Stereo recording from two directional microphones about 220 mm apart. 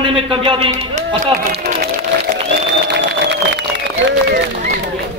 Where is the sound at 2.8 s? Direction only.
50° right (ahead or behind).